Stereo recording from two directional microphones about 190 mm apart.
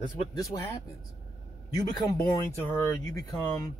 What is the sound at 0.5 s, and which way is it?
Speech, 15° left (ahead or behind).